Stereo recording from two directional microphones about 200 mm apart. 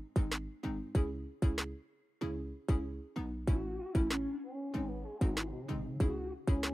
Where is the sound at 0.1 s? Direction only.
Centre (ahead or behind).